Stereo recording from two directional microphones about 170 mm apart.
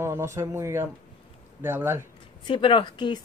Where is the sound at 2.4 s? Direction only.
30° left (ahead or behind).